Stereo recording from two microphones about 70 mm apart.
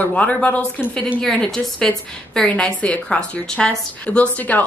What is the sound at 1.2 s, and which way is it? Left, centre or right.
A woman's voice, centre.